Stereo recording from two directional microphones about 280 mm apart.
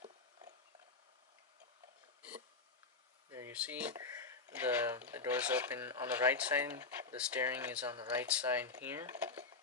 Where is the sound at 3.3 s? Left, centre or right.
Centre.